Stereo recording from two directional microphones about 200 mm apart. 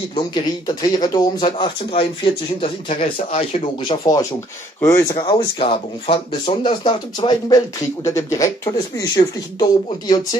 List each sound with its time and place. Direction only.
0.1 s speech: 20° left (ahead or behind)
5.1 s speech: 25° left (ahead or behind)